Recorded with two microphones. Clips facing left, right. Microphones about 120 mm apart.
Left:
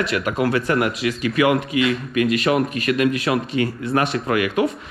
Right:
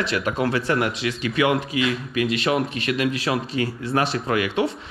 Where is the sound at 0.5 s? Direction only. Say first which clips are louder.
Left 2 dB; 30° right (ahead or behind).